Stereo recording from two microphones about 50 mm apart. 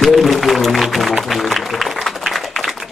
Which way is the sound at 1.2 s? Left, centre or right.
Centre.